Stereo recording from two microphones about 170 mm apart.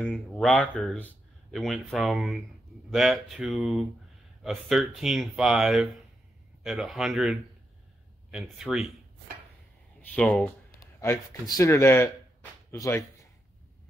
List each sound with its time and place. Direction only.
0.0 s speech: 5° left (ahead or behind)
10.1 s speech: 10° left (ahead or behind)
10.8 s speech: 20° left (ahead or behind)